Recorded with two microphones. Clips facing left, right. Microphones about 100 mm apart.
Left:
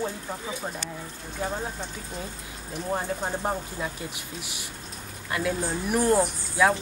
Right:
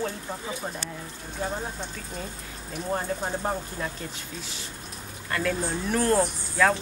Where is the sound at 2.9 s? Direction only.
10° left (ahead or behind).